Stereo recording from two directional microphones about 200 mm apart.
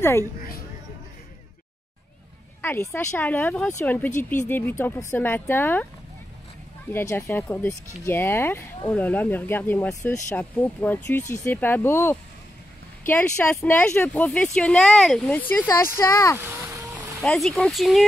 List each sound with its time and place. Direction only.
2.6 s speech: 10° left (ahead or behind)
6.9 s speech: 10° left (ahead or behind)
16.4 s vehicle: 10° right (ahead or behind)
17.2 s speech: 5° left (ahead or behind)